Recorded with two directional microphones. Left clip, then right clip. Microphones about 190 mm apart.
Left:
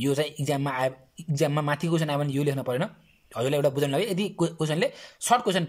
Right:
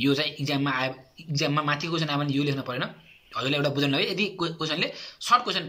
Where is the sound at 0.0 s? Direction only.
40° left (ahead or behind).